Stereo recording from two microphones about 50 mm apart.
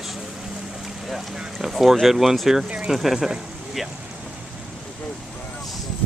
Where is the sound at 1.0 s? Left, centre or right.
Centre.